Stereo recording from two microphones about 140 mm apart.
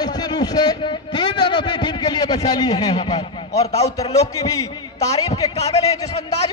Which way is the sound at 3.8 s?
25° left (ahead or behind).